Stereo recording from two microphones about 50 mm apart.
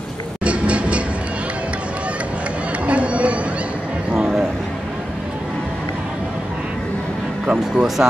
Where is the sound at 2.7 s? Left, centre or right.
Right.